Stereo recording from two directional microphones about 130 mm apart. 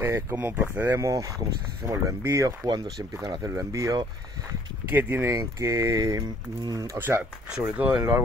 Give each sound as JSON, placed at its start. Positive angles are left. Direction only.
{"t": 0.0, "sound": "speech", "side_deg": -20}
{"t": 0.9, "sound": "speech", "side_deg": -25}
{"t": 7.0, "sound": "speech", "side_deg": -15}